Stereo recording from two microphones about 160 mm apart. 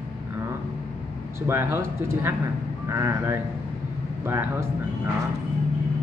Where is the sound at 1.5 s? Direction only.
15° right (ahead or behind).